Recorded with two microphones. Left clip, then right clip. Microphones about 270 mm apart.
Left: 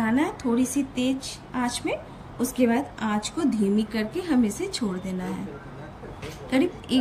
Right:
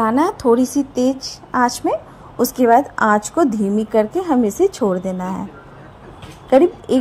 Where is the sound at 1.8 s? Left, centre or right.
Right.